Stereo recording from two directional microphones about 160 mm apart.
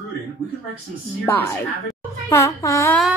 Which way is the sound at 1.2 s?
15° left (ahead or behind).